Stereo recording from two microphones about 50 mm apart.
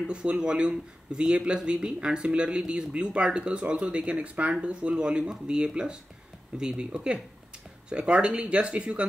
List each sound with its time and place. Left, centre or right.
0.0 s speech: centre